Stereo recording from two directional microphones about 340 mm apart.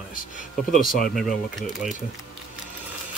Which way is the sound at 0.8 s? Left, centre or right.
Centre.